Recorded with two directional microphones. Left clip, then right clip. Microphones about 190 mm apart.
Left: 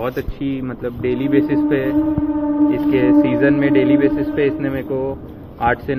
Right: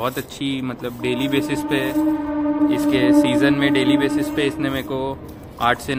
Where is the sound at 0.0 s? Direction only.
20° right (ahead or behind).